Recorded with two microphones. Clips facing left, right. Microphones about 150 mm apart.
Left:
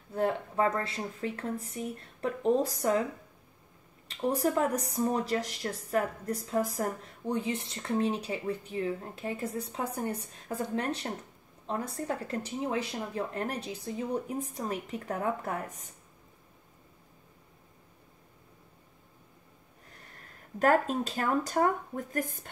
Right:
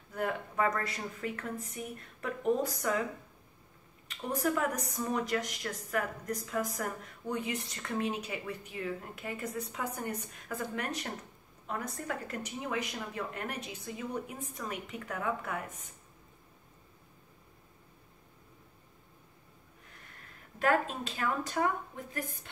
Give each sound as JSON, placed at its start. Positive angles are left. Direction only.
{"t": 0.1, "sound": "a woman's voice", "side_deg": 30}
{"t": 4.1, "sound": "speech", "side_deg": 35}
{"t": 20.5, "sound": "speech", "side_deg": 40}